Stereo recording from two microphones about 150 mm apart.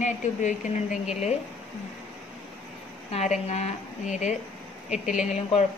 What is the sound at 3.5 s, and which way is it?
Speech, 50° left (ahead or behind).